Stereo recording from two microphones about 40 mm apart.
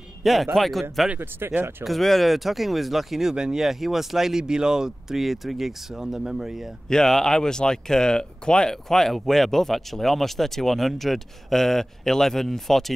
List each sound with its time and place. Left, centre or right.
0.2 s speech: centre
1.4 s speech: right
1.9 s speech: centre
5.2 s speech: centre
6.9 s speech: centre
8.8 s speech: centre